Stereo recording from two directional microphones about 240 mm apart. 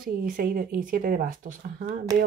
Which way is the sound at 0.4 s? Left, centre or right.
Right.